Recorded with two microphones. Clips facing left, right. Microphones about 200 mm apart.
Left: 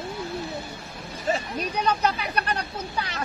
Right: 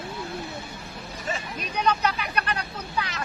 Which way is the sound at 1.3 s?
35° left (ahead or behind).